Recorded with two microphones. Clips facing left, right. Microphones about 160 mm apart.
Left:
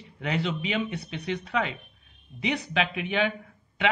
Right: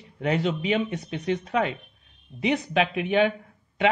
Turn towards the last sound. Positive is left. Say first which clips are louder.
# right 4 dB
turn(degrees=-40)  # may be behind; listen again after turning